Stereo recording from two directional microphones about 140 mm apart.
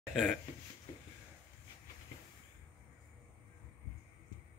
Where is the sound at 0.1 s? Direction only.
Centre (ahead or behind).